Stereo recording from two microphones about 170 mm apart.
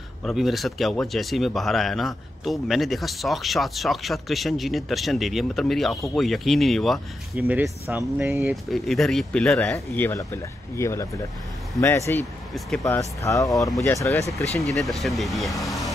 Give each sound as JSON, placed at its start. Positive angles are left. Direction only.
{"t": 0.2, "sound": "speech", "side_deg": 0}
{"t": 7.4, "sound": "speech", "side_deg": -10}
{"t": 8.6, "sound": "speech", "side_deg": 0}
{"t": 12.5, "sound": "speech", "side_deg": 0}
{"t": 13.2, "sound": "speech", "side_deg": 20}
{"t": 14.6, "sound": "speech", "side_deg": 0}